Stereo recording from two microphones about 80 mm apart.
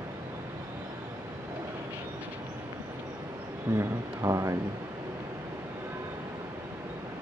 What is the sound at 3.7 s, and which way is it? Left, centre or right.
Speech, right.